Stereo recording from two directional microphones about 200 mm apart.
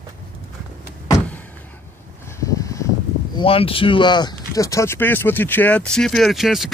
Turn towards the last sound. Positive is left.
turn(degrees=0)  # may be behind; listen again after turning